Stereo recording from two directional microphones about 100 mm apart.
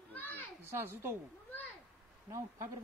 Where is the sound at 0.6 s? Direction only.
25° right (ahead or behind).